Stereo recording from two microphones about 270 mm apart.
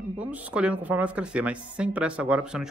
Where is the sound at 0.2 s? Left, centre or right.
Centre.